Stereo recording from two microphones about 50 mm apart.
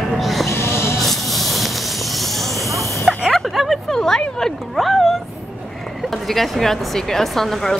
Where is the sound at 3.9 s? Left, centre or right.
Centre.